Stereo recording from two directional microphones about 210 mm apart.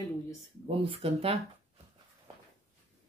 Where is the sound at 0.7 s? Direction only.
25° right (ahead or behind).